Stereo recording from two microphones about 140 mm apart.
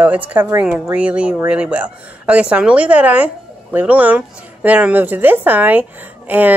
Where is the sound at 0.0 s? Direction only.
10° right (ahead or behind).